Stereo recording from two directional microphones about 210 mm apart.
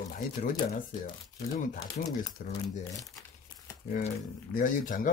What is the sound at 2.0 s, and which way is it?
Speech, 40° left (ahead or behind).